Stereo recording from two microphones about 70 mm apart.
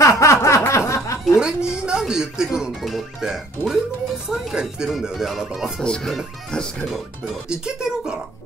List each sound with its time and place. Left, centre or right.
0.0 s a sound: left
1.4 s speech: centre
7.4 s speech: centre